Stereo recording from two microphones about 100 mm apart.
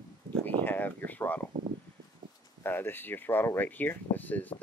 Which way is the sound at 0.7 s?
20° left (ahead or behind).